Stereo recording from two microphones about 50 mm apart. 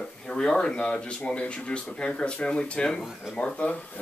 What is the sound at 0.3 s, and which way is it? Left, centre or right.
A man's voice, centre.